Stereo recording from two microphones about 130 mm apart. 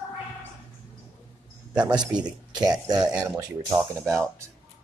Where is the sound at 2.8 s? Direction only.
30° right (ahead or behind).